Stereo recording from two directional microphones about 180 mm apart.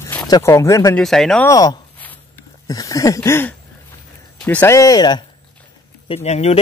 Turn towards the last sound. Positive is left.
turn(degrees=35)  # may be behind; listen again after turning